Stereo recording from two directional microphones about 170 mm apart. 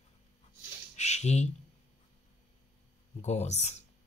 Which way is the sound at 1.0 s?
40° left (ahead or behind).